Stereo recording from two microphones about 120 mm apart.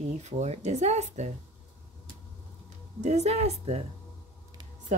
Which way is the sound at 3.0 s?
65° right (ahead or behind).